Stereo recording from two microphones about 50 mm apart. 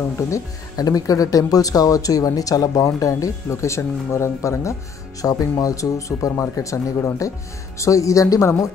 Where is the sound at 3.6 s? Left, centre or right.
Left.